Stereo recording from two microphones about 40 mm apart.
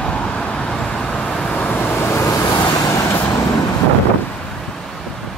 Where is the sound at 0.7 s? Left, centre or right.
Centre.